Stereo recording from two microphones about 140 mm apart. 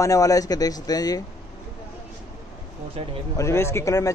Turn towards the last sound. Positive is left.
turn(degrees=20)  # may be behind; listen again after turning